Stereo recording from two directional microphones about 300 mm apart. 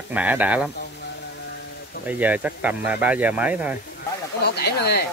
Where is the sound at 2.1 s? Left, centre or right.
Centre.